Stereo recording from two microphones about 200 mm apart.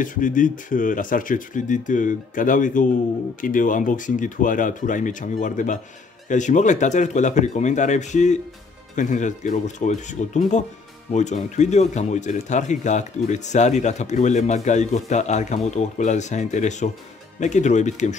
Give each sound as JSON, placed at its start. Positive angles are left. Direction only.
{"t": 0.0, "sound": "speech", "side_deg": 40}